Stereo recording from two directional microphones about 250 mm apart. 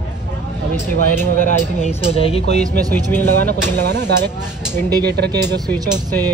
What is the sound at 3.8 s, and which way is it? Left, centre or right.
Speech, right.